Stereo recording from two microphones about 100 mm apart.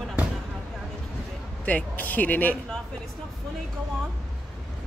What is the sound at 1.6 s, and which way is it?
Speech, 15° left (ahead or behind).